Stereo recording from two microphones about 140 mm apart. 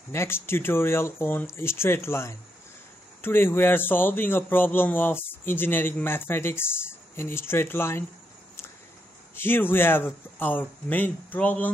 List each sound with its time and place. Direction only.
0.1 s a man's voice: 20° left (ahead or behind)
9.3 s a man's voice: 15° left (ahead or behind)